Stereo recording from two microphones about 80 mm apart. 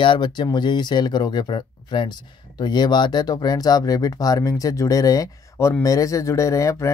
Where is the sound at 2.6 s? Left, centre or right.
Left.